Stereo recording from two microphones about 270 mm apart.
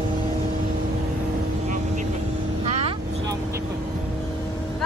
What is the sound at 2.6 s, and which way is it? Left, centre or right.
Vehicle, right.